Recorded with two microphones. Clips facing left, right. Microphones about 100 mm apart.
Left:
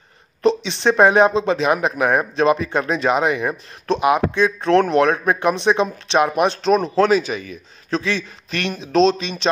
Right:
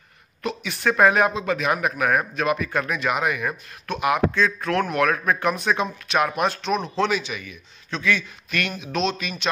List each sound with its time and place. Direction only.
0.4 s speech: 25° left (ahead or behind)
6.6 s a man's voice: 40° left (ahead or behind)